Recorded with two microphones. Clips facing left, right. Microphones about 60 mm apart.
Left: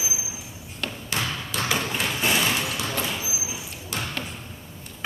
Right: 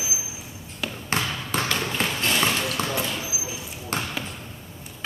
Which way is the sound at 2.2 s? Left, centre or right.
Centre.